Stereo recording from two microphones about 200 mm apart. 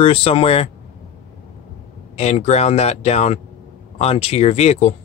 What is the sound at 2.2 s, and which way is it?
Speech, 35° left (ahead or behind).